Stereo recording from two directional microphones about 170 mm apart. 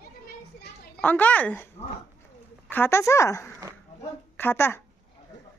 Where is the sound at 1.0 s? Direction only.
10° left (ahead or behind).